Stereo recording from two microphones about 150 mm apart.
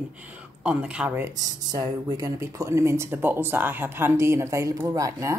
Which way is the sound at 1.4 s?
30° right (ahead or behind).